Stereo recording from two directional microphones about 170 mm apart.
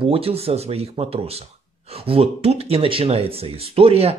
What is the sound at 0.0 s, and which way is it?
Speech, 35° right (ahead or behind).